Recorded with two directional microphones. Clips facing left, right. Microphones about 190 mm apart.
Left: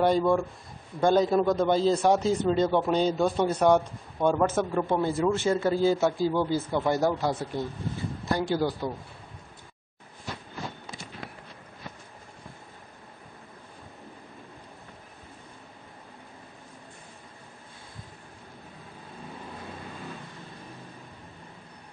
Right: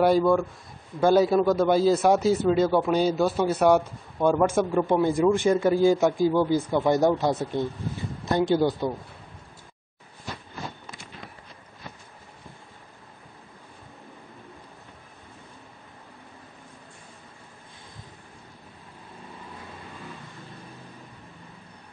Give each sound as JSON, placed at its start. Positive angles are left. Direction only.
{"t": 0.0, "sound": "a man's voice", "side_deg": -5}